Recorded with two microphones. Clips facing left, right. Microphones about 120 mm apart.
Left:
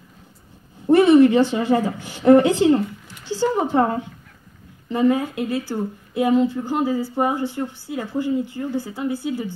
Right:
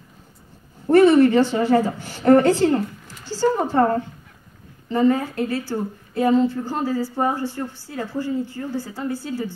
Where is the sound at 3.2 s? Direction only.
20° left (ahead or behind).